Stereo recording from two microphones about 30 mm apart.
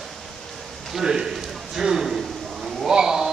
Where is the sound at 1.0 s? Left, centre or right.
Centre.